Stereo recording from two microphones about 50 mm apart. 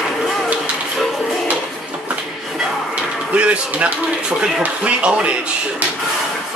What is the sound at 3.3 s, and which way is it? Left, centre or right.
A man's voice, right.